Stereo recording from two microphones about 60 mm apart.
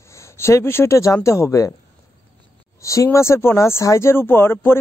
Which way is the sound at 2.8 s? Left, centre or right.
Left.